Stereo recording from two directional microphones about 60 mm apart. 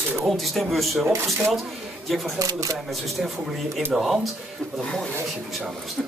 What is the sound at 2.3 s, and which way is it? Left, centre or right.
Speech, right.